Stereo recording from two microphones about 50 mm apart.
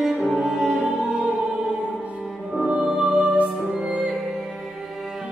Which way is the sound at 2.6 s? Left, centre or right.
Centre.